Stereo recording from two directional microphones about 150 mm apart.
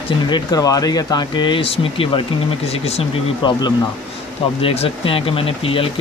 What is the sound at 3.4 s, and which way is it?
Speech, 30° left (ahead or behind).